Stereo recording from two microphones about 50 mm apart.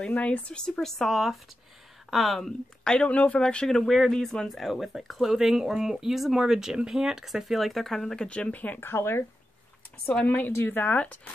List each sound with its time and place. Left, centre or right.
0.0 s speech: left; by 2.5 s centre
2.8 s speech: centre
3.3 s speech: centre
4.6 s speech: centre
8.3 s speech: left
8.8 s speech: left
10.6 s speech: left